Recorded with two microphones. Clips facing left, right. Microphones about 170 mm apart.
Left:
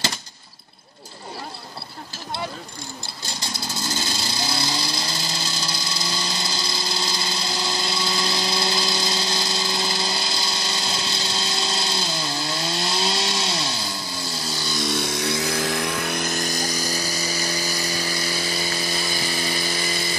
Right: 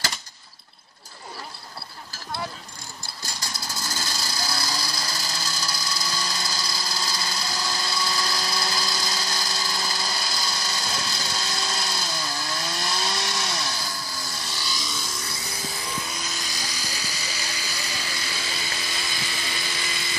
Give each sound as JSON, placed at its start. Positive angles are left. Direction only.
{"t": 3.3, "sound": "vehicle", "side_deg": 25}